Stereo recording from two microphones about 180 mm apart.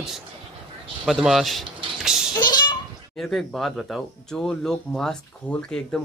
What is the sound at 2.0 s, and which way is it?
Music, 5° right (ahead or behind).